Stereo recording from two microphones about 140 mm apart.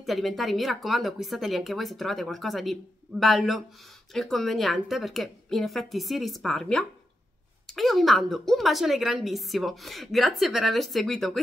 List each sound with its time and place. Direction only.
0.0 s a woman's voice: centre (ahead or behind)